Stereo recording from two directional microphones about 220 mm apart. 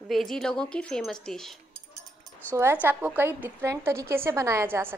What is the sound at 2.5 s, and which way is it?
A woman's voice, 10° right (ahead or behind).